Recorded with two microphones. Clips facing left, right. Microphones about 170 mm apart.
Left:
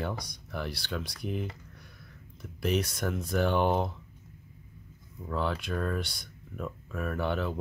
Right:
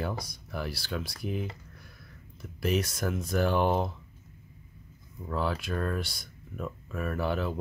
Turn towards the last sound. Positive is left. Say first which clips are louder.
# right 1 dB
turn(degrees=-5)  # may be behind; listen again after turning